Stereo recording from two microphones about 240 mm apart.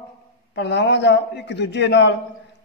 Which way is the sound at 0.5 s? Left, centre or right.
Left.